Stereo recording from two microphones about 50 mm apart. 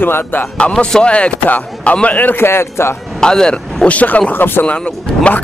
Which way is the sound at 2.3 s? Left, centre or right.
Left.